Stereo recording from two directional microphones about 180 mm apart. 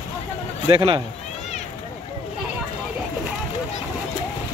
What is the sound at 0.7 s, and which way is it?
Speech, 30° right (ahead or behind).